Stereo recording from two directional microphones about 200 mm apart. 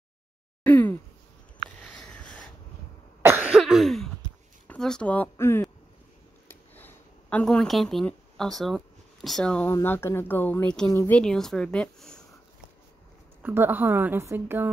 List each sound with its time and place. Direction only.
0.7 s a sound: 10° left (ahead or behind)
3.2 s cough: 10° right (ahead or behind)
4.6 s a woman's voice: 5° left (ahead or behind)
13.4 s a woman's voice: 10° right (ahead or behind)